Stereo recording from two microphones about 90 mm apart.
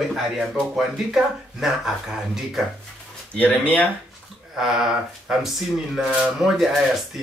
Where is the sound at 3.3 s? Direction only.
15° left (ahead or behind).